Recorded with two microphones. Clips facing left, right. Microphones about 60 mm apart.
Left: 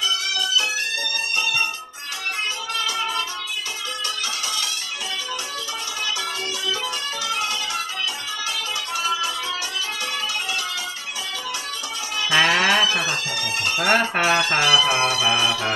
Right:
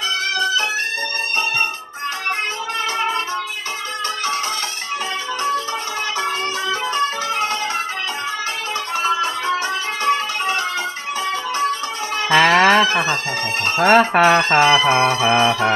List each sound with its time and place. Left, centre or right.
0.3 s music: right
2.8 s music: right
6.9 s music: right
8.9 s music: right
12.3 s music: right